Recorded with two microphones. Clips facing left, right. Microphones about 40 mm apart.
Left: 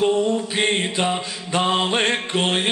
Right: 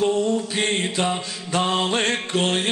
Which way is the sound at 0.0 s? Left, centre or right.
Centre.